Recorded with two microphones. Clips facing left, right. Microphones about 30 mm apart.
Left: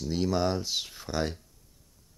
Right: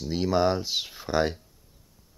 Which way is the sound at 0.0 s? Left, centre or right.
Centre.